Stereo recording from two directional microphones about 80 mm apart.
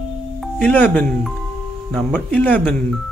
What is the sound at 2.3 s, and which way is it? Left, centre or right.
Music, left.